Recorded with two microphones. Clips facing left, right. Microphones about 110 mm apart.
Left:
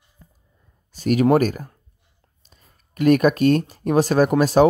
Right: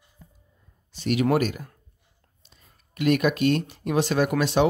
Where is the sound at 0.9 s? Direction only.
45° left (ahead or behind).